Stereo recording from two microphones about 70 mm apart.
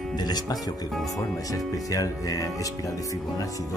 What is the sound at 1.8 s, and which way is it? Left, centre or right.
Speech, left.